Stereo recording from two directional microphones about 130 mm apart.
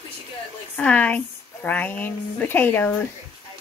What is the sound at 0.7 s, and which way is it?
A woman's voice, 10° left (ahead or behind).